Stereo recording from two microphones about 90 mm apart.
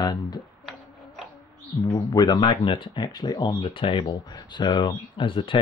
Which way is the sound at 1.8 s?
55° left (ahead or behind).